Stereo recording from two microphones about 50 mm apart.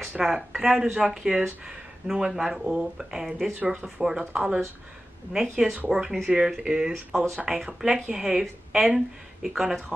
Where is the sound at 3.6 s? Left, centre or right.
Right.